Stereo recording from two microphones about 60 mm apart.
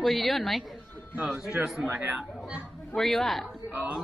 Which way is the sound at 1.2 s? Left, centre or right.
Centre.